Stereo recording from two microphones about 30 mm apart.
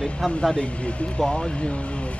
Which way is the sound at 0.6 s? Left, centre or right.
Left.